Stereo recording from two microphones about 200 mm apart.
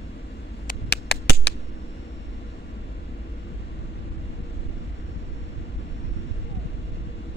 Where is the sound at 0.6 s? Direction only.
55° left (ahead or behind).